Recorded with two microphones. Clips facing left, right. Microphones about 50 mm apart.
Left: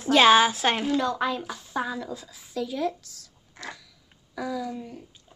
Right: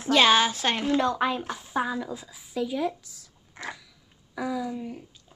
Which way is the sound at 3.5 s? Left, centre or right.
Centre.